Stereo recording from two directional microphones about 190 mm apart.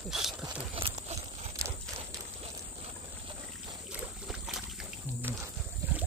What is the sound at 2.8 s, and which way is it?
Vehicle, 30° right (ahead or behind).